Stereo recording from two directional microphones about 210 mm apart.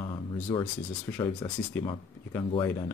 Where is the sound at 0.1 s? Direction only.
20° left (ahead or behind).